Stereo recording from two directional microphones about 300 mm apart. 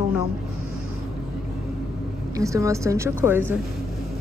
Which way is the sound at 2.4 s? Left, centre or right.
Centre.